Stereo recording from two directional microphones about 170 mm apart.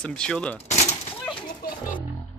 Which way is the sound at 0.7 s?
45° left (ahead or behind).